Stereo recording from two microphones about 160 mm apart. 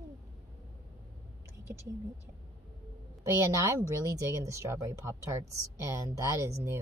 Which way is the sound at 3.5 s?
20° right (ahead or behind).